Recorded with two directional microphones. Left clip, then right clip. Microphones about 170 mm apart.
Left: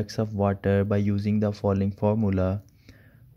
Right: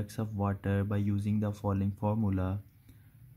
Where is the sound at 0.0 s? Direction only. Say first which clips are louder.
Left 10 dB; 10° left (ahead or behind).